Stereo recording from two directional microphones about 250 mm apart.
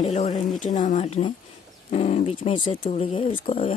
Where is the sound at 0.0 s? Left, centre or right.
Left.